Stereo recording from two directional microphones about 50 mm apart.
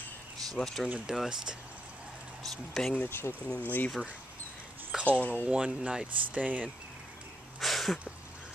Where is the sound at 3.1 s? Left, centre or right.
Left.